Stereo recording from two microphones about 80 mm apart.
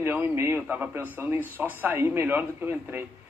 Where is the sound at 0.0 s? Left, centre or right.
Right.